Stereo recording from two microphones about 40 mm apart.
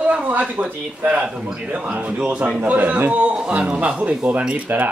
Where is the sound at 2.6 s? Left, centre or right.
Right.